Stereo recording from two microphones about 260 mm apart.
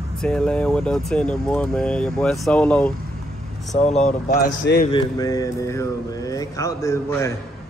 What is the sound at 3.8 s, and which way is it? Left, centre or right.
Speech, left.